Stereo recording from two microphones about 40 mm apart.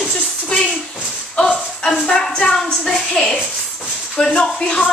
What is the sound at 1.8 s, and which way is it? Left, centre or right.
A woman's voice, centre.